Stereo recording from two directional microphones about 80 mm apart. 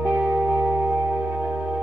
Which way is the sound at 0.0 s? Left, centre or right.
Centre.